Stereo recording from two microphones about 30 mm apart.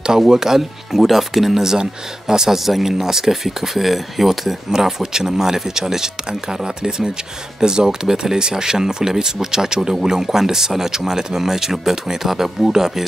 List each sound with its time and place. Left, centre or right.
0.3 s speech: centre
0.6 s speech: centre
1.8 s speech: centre
4.6 s speech: centre
6.6 s speech: right